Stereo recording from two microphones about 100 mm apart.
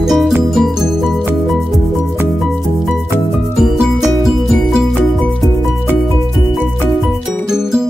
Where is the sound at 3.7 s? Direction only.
Centre (ahead or behind).